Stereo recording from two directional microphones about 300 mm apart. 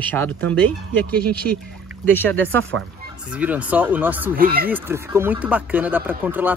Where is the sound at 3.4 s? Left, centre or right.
Centre.